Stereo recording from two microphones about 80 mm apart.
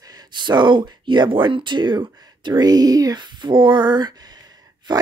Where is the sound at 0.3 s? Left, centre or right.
Right.